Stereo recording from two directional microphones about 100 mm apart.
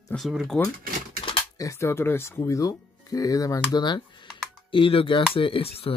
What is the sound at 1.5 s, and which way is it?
Speech, 30° left (ahead or behind).